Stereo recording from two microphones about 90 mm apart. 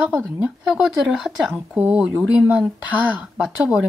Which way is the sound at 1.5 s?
20° right (ahead or behind).